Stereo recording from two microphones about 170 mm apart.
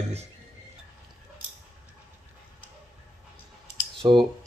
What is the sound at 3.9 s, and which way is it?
Computer keyboard, 30° right (ahead or behind).